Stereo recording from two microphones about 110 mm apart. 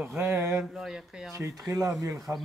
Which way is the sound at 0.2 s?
25° right (ahead or behind).